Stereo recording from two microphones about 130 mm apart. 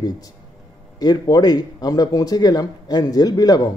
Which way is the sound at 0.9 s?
30° left (ahead or behind).